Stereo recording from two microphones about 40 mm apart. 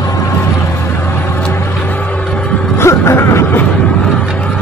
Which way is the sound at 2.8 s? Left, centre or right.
Left.